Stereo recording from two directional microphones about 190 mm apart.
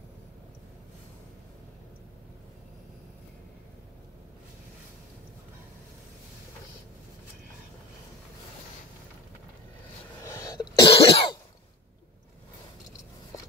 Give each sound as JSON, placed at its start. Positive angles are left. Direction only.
{"t": 10.2, "sound": "cough", "side_deg": 15}